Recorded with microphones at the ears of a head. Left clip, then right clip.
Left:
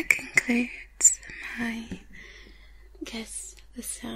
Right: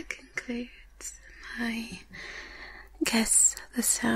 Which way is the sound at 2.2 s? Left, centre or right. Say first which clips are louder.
Right 8 dB; right.